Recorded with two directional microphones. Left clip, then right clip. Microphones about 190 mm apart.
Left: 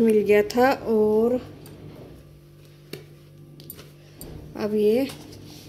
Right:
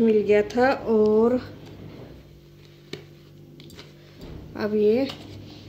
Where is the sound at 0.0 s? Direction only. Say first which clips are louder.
Left 1 dB; 15° left (ahead or behind).